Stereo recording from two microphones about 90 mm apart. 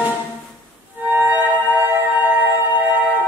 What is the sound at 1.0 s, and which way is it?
Music, 20° right (ahead or behind).